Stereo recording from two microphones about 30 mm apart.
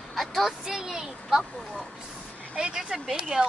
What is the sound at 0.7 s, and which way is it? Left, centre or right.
Speech, centre.